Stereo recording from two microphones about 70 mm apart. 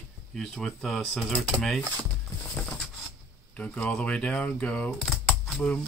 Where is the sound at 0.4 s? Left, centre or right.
Centre.